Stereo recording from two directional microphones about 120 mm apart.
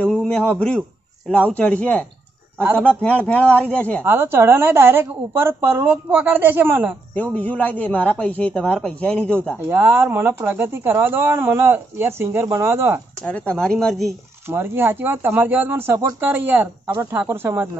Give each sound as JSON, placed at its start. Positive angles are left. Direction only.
{"t": 0.0, "sound": "a man's voice", "side_deg": 5}
{"t": 4.0, "sound": "a woman's voice", "side_deg": -20}
{"t": 7.3, "sound": "a man's voice", "side_deg": 15}
{"t": 9.7, "sound": "speech", "side_deg": -20}
{"t": 13.2, "sound": "a man's voice", "side_deg": 10}
{"t": 14.0, "sound": "a woman's voice", "side_deg": -20}